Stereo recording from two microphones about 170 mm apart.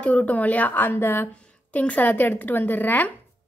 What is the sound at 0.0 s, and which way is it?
A woman's voice, 10° left (ahead or behind).